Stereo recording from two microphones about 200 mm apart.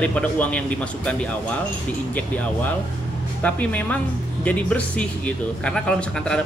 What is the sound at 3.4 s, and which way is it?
Speech, 5° left (ahead or behind).